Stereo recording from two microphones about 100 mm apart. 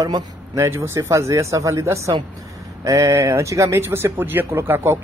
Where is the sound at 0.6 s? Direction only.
25° right (ahead or behind).